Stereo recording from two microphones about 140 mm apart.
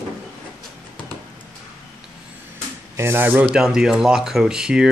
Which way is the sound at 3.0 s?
15° right (ahead or behind).